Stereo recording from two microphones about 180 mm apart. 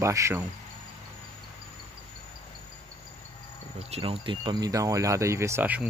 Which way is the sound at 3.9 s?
30° right (ahead or behind).